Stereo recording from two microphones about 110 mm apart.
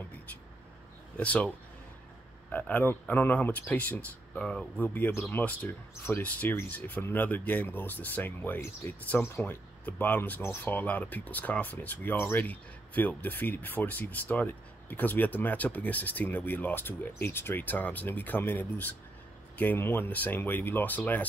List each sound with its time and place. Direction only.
1.1 s speech: 10° left (ahead or behind)
2.5 s speech: 15° left (ahead or behind)